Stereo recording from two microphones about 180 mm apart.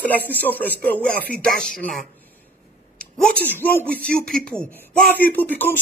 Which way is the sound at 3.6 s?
10° left (ahead or behind).